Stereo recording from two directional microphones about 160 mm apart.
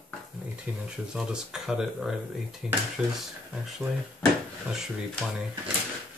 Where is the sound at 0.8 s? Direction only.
5° right (ahead or behind).